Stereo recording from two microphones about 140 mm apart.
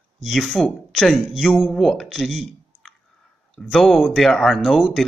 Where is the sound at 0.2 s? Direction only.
Centre (ahead or behind).